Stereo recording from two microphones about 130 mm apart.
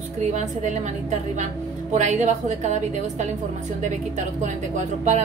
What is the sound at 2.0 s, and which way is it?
A woman's voice, 65° right (ahead or behind).